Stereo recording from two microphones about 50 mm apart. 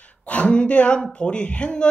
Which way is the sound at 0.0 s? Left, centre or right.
Left.